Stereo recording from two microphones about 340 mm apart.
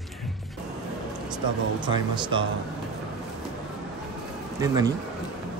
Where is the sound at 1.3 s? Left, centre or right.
Centre.